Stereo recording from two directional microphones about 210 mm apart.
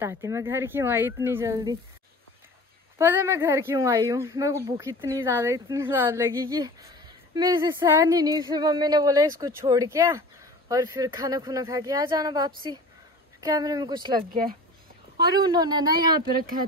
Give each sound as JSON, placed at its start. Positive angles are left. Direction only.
{"t": 0.0, "sound": "speech", "side_deg": -15}
{"t": 3.0, "sound": "a woman's voice", "side_deg": -10}